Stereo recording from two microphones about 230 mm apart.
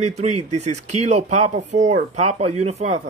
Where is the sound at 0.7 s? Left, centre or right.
Right.